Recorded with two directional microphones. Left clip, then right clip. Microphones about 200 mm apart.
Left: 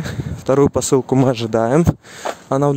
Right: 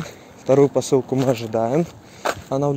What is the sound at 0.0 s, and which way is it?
Speech, 30° left (ahead or behind).